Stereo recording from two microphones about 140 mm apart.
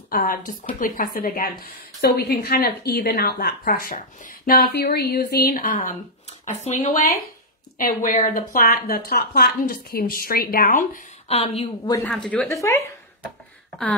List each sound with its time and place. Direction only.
0.1 s a woman's voice: 90° left
0.7 s a woman's voice: 80° left
6.4 s a woman's voice: 55° left (ahead or behind); by 11.0 s 75° left (ahead or behind)
11.2 s a woman's voice: 45° left (ahead or behind)
12.0 s speech: 5° left (ahead or behind)